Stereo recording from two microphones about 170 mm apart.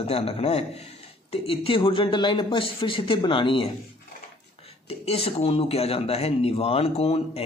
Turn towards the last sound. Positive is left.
turn(degrees=35)  # may be behind; listen again after turning